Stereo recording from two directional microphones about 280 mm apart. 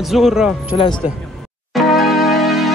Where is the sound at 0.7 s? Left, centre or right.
Centre.